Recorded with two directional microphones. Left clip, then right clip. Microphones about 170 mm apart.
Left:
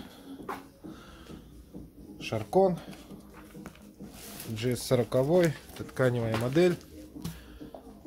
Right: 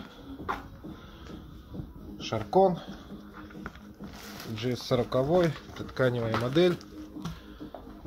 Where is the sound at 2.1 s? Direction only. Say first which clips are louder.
Right 2 dB; 10° left (ahead or behind).